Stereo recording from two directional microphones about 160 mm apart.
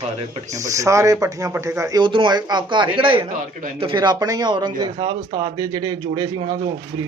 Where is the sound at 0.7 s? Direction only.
20° right (ahead or behind).